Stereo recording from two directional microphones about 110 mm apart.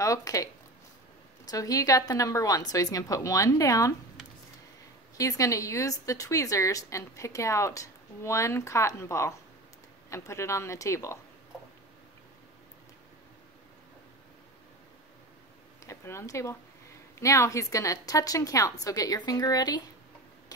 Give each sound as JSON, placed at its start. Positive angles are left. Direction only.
{"t": 0.0, "sound": "a woman's voice", "side_deg": 30}
{"t": 5.1, "sound": "a woman's voice", "side_deg": 30}
{"t": 15.8, "sound": "a woman's voice", "side_deg": 25}